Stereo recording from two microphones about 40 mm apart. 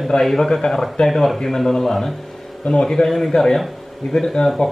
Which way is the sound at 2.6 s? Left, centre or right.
Centre.